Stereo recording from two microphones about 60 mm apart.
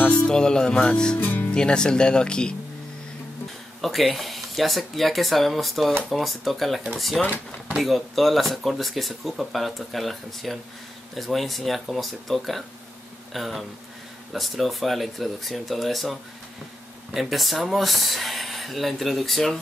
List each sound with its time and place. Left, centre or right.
0.1 s speech: centre
1.1 s music: left
1.5 s speech: centre
3.8 s speech: centre